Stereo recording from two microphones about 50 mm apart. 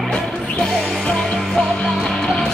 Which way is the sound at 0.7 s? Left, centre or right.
Centre.